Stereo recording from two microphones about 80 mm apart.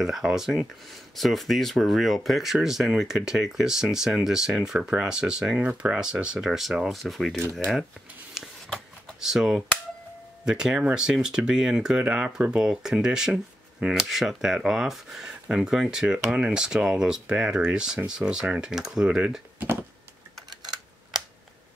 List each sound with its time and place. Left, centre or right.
0.0 s speech: centre
8.6 s a sound: centre
9.2 s speech: centre
20.4 s typing: right